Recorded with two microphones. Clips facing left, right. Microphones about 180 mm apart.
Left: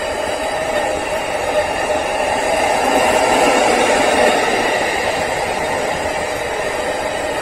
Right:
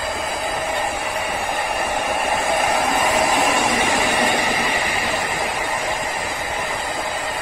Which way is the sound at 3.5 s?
90° left.